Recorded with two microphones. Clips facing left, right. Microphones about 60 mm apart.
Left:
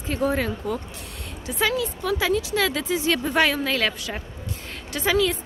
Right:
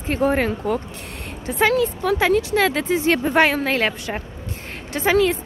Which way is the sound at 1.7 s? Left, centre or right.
Right.